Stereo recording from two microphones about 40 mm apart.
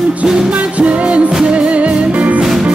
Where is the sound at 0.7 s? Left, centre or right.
Right.